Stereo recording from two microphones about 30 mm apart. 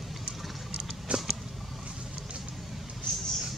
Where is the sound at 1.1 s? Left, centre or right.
Right.